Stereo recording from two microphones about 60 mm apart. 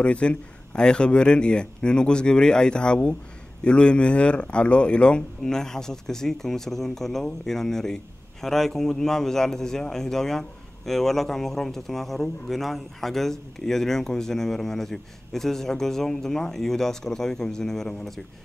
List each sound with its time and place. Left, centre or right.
0.0 s speech: centre